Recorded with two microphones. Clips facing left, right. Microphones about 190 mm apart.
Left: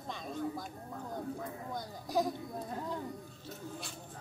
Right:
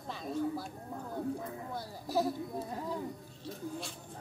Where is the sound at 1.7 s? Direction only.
5° right (ahead or behind).